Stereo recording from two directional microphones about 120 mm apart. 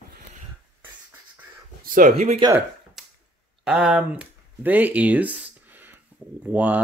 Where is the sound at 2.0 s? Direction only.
85° right.